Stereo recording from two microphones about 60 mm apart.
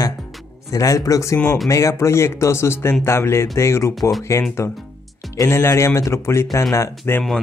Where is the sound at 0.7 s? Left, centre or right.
Left.